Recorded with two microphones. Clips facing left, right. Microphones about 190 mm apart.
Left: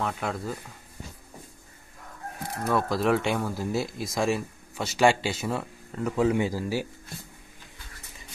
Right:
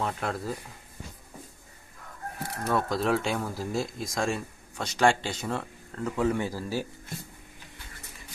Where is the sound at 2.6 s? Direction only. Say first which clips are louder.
Left 2 dB; centre (ahead or behind).